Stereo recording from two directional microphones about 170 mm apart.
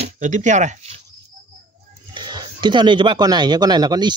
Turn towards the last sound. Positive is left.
turn(degrees=-25)  # may be behind; listen again after turning